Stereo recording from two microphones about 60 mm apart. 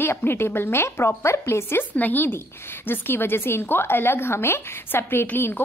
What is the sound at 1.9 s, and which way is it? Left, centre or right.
A woman's voice, left.